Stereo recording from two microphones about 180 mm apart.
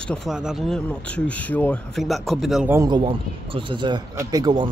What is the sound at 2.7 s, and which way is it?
A man's voice, 20° right (ahead or behind).